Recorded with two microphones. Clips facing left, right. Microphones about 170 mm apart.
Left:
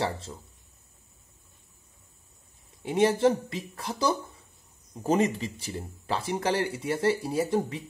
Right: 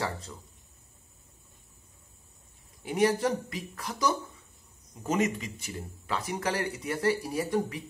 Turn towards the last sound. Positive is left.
turn(degrees=25)  # may be behind; listen again after turning